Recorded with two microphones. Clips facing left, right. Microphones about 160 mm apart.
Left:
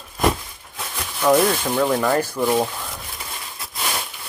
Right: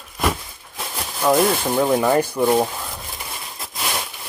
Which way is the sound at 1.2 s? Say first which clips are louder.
Even; 10° right (ahead or behind).